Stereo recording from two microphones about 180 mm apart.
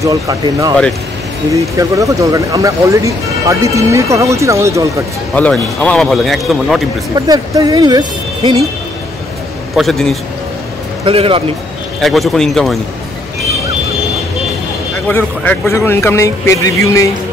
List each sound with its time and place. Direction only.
0.0 s speech: 20° right (ahead or behind)
5.3 s a man's voice: 5° left (ahead or behind)
7.2 s speech: 20° right (ahead or behind)
9.8 s a man's voice: centre (ahead or behind)
11.1 s a man's voice: 30° right (ahead or behind)
12.0 s a man's voice: centre (ahead or behind)
15.0 s speech: 10° left (ahead or behind)